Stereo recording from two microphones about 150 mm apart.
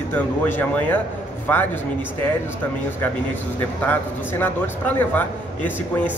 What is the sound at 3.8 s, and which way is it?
A man's voice, 10° left (ahead or behind).